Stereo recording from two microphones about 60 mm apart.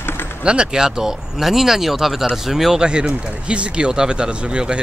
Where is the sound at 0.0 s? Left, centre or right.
Left.